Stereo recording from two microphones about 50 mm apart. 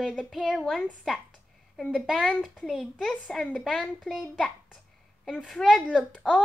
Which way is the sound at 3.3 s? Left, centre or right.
Centre.